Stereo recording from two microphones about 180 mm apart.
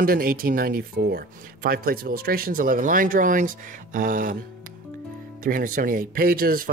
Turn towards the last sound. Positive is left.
turn(degrees=-55)  # may be behind; listen again after turning